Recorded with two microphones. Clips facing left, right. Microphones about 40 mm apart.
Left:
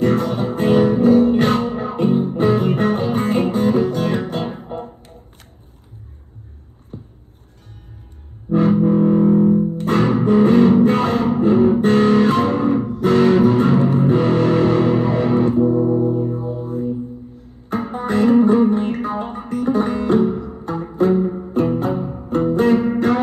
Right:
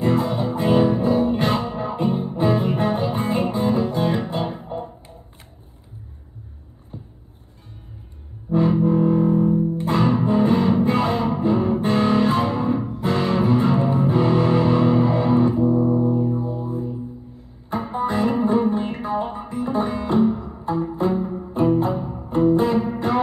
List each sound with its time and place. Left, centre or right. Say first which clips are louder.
0.0 s music: left 3 dB; left
6.9 s a sound: left 3 dB; centre
8.5 s music: left 3 dB; left
8.8 s music: left 4 dB; left